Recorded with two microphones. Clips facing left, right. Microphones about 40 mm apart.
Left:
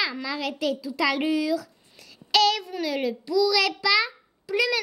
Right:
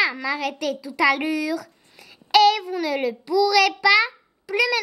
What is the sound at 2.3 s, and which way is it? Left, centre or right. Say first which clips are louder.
A woman's voice: right 5 dB; right.